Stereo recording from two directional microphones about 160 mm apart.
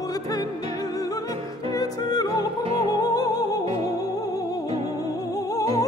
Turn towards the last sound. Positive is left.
turn(degrees=20)  # may be behind; listen again after turning